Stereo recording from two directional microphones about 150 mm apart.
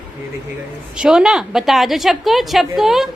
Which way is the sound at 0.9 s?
5° right (ahead or behind).